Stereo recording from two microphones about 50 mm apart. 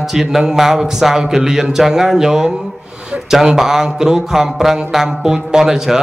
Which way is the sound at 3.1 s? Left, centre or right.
Right.